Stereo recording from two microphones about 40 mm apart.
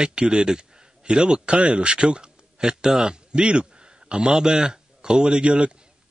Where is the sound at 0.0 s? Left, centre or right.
Right.